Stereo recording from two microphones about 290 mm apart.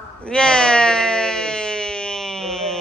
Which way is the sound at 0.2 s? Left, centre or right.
Centre.